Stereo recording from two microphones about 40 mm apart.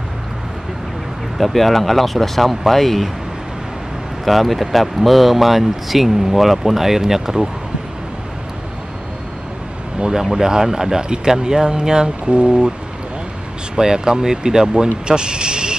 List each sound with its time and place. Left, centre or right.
1.4 s speech: centre
4.2 s speech: centre
10.3 s speech: centre
13.7 s speech: centre